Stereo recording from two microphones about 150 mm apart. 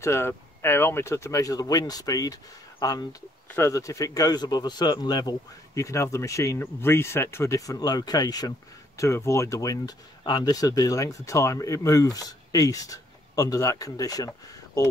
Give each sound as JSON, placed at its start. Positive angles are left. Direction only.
{"t": 0.0, "sound": "speech", "side_deg": 15}